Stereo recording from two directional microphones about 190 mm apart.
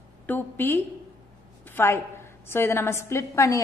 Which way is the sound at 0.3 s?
10° left (ahead or behind).